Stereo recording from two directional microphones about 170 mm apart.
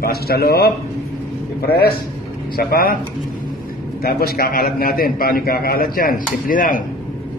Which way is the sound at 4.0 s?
60° left (ahead or behind).